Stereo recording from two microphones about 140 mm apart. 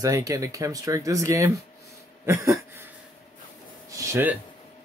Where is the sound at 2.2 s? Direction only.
20° right (ahead or behind).